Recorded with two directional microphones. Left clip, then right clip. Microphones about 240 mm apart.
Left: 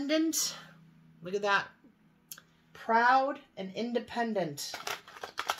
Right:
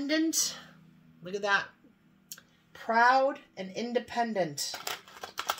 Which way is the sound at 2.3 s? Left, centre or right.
Centre.